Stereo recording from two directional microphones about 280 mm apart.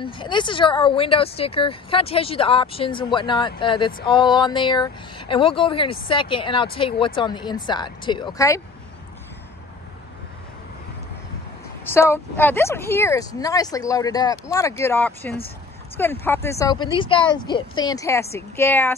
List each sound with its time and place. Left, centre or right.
0.0 s speech: centre
11.8 s speech: centre